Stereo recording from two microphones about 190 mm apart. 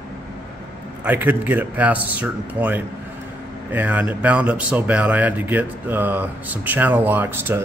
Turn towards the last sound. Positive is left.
turn(degrees=-10)  # may be behind; listen again after turning